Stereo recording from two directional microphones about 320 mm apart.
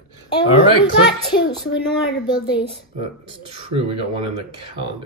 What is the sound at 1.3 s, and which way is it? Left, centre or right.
A woman's voice, centre.